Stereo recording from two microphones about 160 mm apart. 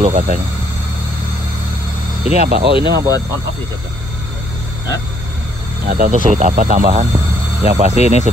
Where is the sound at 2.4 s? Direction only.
80° right.